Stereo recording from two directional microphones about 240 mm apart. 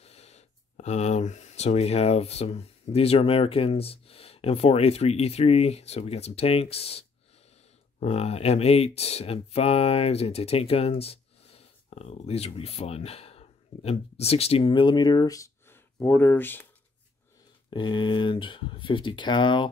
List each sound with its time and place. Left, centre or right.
0.0 s speech: left; by 16.6 s centre
17.6 s speech: centre